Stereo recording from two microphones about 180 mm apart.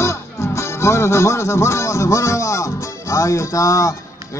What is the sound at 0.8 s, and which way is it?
Speech, 15° left (ahead or behind).